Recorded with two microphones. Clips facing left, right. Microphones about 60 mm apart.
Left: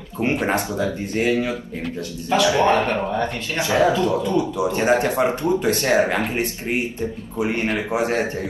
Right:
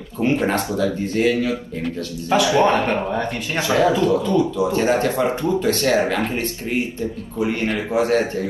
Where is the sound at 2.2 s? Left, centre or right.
Right.